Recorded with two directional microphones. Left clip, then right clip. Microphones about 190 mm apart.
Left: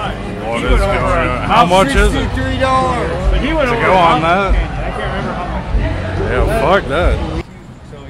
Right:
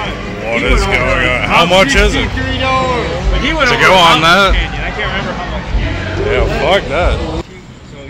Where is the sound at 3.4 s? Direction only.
5° left (ahead or behind).